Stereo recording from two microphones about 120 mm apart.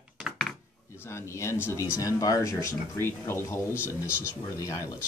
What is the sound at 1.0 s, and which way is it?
Speech, 25° left (ahead or behind).